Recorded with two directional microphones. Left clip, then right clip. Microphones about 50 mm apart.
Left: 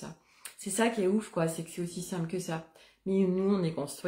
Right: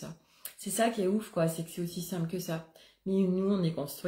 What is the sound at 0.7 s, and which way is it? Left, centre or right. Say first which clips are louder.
Speech: left 1 dB; left.